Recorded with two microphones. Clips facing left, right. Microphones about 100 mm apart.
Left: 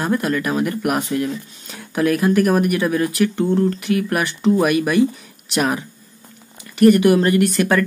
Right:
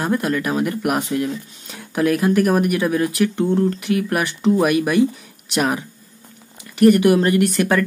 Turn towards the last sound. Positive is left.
turn(degrees=-15)  # may be behind; listen again after turning